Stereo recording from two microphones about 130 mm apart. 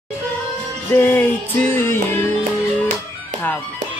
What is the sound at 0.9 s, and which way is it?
Music, 15° left (ahead or behind).